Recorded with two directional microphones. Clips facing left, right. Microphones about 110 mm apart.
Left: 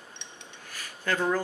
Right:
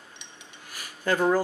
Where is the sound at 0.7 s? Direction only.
15° right (ahead or behind).